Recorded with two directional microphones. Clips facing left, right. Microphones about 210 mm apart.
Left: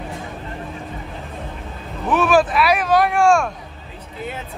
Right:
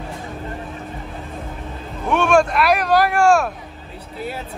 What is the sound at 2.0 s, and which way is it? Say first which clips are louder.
Vehicle: even; centre (ahead or behind).